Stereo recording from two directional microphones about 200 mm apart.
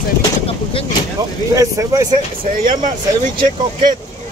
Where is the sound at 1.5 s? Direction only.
15° right (ahead or behind).